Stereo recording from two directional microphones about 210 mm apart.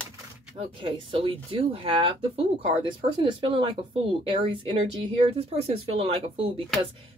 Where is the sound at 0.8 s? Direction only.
25° right (ahead or behind).